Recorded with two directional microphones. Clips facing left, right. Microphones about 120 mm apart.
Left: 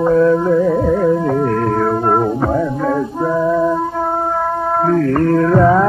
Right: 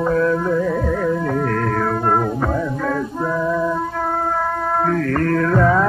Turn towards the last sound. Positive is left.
turn(degrees=20)  # may be behind; listen again after turning